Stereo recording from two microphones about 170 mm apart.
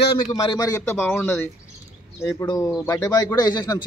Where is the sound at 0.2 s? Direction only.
30° left (ahead or behind).